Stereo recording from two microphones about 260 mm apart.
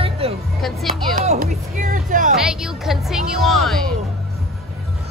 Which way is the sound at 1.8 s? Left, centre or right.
Right.